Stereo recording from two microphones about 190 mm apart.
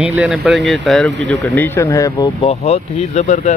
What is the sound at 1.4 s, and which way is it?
Speech, 10° left (ahead or behind).